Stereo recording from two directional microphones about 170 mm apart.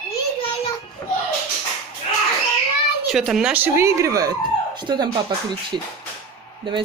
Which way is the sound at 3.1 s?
Centre (ahead or behind).